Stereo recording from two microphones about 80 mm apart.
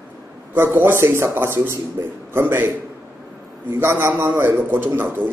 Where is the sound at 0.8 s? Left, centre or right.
Right.